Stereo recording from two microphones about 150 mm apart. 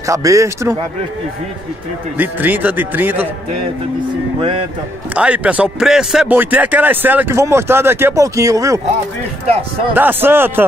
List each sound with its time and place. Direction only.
0.0 s speech: 20° right (ahead or behind)
2.1 s speech: 10° right (ahead or behind)
4.4 s speech: 40° right (ahead or behind)
5.1 s speech: 10° right (ahead or behind)
9.9 s speech: 15° right (ahead or behind)